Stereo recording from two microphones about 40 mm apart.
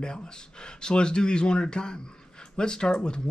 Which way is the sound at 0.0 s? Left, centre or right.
Centre.